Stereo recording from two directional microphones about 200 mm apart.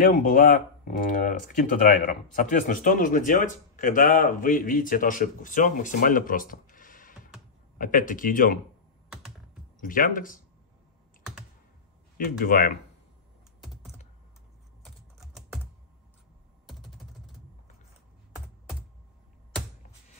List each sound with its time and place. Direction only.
0.0 s speech: 45° left (ahead or behind)
9.8 s speech: 45° left (ahead or behind)
12.2 s speech: 45° left (ahead or behind)
16.6 s typing: centre (ahead or behind)